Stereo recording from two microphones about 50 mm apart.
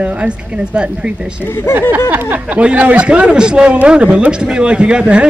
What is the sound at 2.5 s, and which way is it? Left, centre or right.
Speech, right.